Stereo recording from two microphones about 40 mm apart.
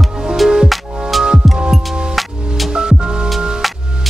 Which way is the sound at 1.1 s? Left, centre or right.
Centre.